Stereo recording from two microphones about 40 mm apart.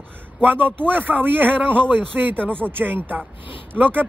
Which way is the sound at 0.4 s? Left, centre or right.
Right.